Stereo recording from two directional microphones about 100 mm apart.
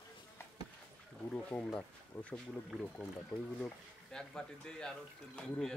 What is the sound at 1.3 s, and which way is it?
Speech, 15° left (ahead or behind).